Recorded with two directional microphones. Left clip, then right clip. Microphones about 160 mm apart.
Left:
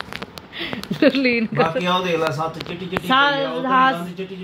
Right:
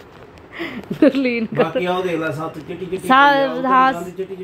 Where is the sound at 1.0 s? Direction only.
15° right (ahead or behind).